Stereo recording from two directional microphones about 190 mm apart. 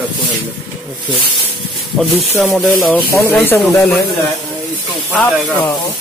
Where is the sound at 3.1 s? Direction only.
10° left (ahead or behind).